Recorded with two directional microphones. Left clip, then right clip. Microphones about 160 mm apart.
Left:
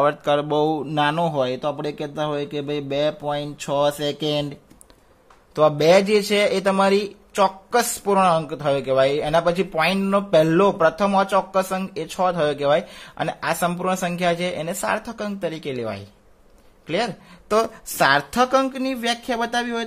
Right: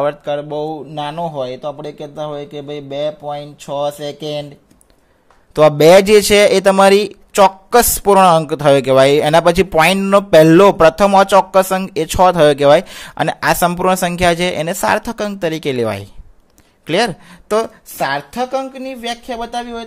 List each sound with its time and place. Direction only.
0.0 s a man's voice: centre (ahead or behind)
5.5 s a man's voice: 30° right (ahead or behind)
17.6 s a man's voice: centre (ahead or behind)